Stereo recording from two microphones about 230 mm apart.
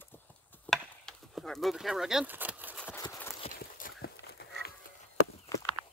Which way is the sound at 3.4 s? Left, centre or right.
Left.